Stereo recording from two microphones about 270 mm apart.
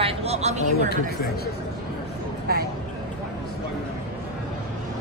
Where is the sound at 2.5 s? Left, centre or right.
Right.